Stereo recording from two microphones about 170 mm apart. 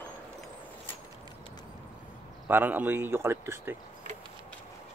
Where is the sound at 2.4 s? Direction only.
10° right (ahead or behind).